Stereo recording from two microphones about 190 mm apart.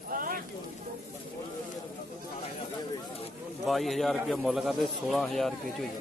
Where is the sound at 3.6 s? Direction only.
Centre (ahead or behind).